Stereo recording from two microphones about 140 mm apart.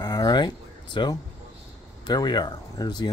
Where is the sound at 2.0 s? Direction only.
30° left (ahead or behind).